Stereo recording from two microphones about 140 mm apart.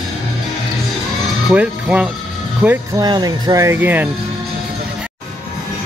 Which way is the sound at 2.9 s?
30° right (ahead or behind).